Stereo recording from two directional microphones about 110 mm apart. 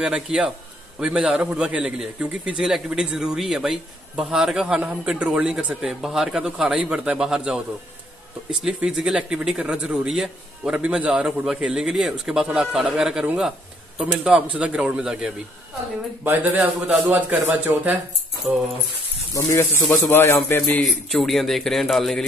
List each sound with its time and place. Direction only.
0.0 s a man's voice: 10° right (ahead or behind)
19.3 s speech: 25° left (ahead or behind)
20.8 s a man's voice: centre (ahead or behind)